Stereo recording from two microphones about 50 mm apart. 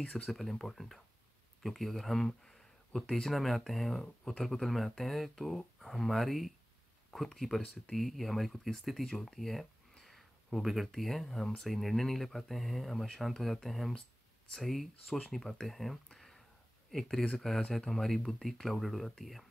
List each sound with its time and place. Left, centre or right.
0.3 s speech: centre
4.0 s speech: centre
4.4 s speech: centre